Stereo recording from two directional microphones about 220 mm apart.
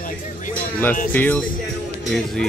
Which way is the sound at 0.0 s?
40° left (ahead or behind).